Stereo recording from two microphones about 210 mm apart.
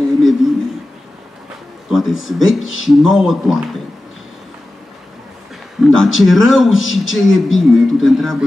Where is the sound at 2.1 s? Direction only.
70° left (ahead or behind).